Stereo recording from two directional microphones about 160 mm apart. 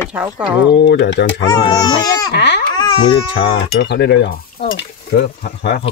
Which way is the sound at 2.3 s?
90° left.